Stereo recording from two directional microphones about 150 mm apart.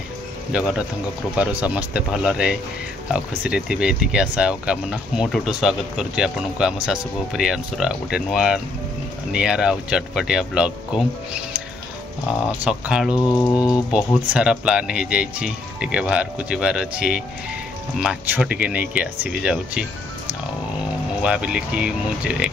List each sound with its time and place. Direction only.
0.5 s speech: 5° right (ahead or behind)
12.3 s speech: 5° right (ahead or behind)
13.1 s a sound: 25° left (ahead or behind)
13.9 s speech: 5° right (ahead or behind)
21.2 s speech: 5° right (ahead or behind)